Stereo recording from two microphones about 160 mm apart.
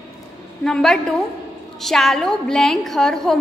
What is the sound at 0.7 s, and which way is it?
A woman's voice, 5° left (ahead or behind).